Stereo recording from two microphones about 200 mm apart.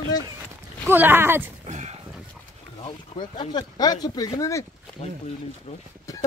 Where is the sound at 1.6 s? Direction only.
35° right (ahead or behind).